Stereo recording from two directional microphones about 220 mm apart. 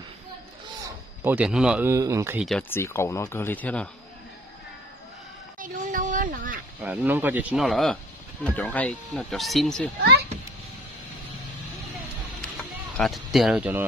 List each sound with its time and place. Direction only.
0.8 s speech: 10° right (ahead or behind)
2.4 s speech: centre (ahead or behind)
5.6 s a sound: 40° right (ahead or behind)
6.8 s speech: 5° right (ahead or behind)
12.9 s speech: centre (ahead or behind)